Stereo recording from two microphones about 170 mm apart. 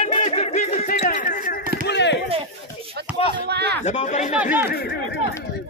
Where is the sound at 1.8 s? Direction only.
90° left.